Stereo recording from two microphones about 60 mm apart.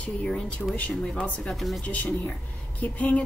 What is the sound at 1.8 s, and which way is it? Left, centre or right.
A woman's voice, left.